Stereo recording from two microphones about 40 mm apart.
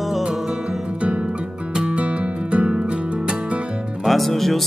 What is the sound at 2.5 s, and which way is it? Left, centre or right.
Music, right.